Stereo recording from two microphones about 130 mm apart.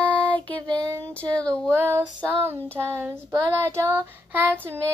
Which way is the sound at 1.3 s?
10° left (ahead or behind).